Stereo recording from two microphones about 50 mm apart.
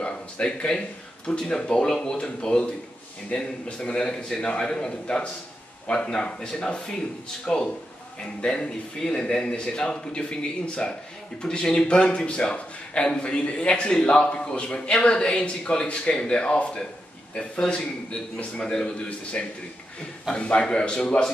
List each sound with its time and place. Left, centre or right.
0.0 s a man's voice: centre